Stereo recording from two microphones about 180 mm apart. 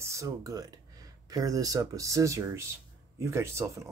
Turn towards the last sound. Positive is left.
turn(degrees=-15)  # may be behind; listen again after turning